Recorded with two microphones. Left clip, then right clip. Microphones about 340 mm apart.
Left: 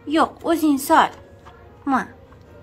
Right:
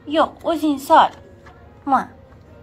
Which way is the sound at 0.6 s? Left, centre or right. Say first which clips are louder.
Right 3 dB; left.